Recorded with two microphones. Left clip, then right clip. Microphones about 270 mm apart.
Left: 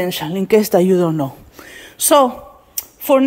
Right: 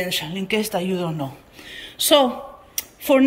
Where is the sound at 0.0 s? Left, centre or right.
Centre.